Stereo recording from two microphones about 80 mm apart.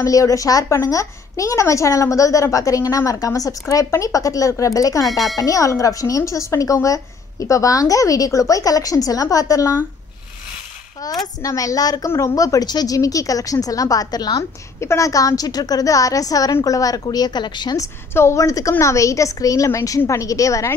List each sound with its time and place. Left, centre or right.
0.0 s speech: left
5.1 s speech: centre
5.4 s speech: left
11.0 s speech: left
12.1 s speech: left
12.4 s speech: left
14.8 s a woman's voice: left
18.1 s speech: left